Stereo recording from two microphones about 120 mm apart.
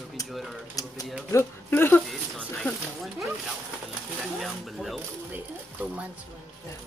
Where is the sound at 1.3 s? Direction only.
20° left (ahead or behind).